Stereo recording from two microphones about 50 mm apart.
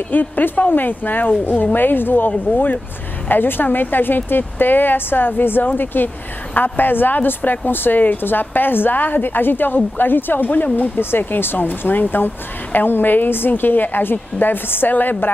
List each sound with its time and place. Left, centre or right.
0.1 s speech: left
11.0 s speech: left